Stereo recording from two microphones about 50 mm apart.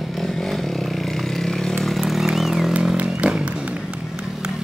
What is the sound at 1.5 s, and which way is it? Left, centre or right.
Chainsaw, centre.